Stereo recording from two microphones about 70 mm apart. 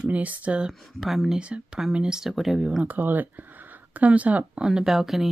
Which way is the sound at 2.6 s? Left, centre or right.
Centre.